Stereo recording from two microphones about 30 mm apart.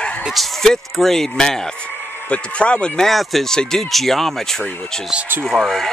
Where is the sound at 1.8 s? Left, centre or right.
Left.